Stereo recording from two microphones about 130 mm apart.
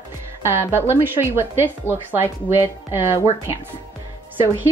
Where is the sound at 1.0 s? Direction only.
20° right (ahead or behind).